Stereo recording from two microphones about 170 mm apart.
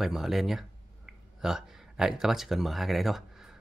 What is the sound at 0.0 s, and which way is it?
Speech, centre (ahead or behind).